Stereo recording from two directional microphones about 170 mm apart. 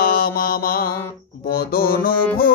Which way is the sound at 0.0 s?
60° left (ahead or behind).